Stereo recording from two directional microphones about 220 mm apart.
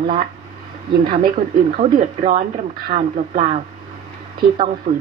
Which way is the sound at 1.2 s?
35° right (ahead or behind).